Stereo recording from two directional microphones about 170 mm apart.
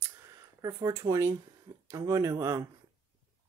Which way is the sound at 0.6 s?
20° right (ahead or behind).